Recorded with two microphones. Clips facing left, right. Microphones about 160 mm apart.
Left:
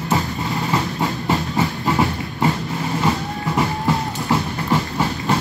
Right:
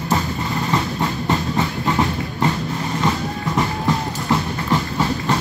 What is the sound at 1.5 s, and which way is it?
Train, 20° left (ahead or behind).